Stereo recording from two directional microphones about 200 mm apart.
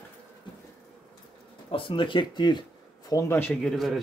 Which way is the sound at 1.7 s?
25° left (ahead or behind).